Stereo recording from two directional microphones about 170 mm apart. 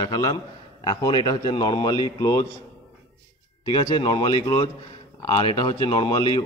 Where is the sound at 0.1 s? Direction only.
20° left (ahead or behind).